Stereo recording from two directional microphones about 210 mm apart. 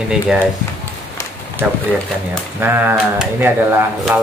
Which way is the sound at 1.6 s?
5° right (ahead or behind).